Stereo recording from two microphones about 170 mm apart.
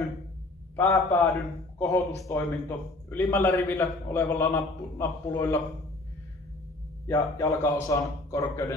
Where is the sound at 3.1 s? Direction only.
15° left (ahead or behind).